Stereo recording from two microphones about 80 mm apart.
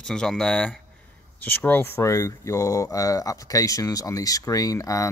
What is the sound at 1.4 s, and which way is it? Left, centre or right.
Speech, left.